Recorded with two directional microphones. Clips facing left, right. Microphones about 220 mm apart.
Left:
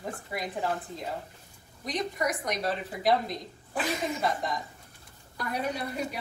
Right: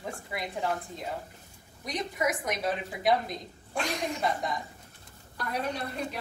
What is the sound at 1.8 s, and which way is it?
Speech, centre (ahead or behind).